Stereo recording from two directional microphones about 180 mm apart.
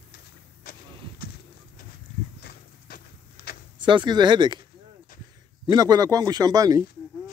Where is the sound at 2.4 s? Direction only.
55° left (ahead or behind).